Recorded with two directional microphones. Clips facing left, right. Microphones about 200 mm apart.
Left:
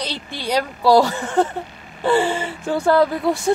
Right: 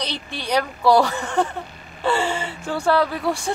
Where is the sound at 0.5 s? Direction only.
15° left (ahead or behind).